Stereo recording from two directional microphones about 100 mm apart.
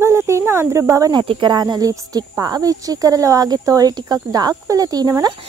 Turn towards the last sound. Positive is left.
turn(degrees=-40)  # may be behind; listen again after turning